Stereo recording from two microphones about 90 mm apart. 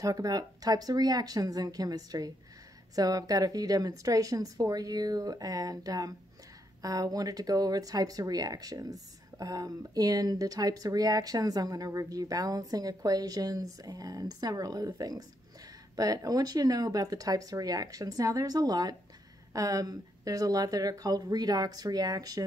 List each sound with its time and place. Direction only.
0.0 s speech: 45° right (ahead or behind)